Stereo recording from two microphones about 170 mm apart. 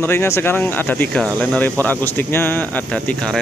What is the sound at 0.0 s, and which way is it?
Speech, 15° left (ahead or behind).